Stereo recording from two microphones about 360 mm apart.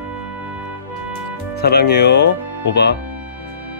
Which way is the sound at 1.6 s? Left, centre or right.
Left.